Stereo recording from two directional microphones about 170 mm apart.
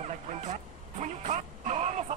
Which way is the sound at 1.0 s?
45° right (ahead or behind).